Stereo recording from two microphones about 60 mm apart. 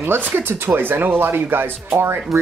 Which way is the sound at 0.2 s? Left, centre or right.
Right.